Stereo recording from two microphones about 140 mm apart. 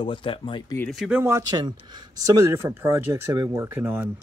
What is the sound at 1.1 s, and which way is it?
Speech, 15° right (ahead or behind).